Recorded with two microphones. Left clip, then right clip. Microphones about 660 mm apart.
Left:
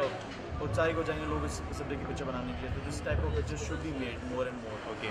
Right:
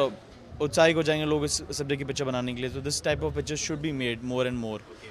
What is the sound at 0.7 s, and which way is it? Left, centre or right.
Speech, right.